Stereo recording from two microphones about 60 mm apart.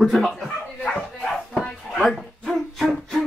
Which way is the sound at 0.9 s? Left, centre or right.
Centre.